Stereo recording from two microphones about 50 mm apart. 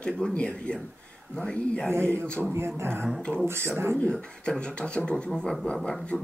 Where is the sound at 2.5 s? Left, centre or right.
Right.